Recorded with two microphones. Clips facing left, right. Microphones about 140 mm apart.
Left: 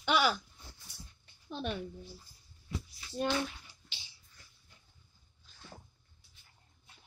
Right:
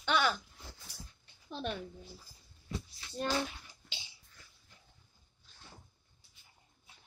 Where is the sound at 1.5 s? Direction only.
Centre (ahead or behind).